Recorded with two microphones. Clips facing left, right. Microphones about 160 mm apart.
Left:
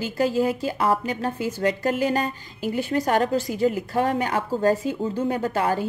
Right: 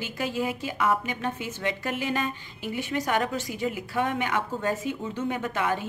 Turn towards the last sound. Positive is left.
turn(degrees=35)  # may be behind; listen again after turning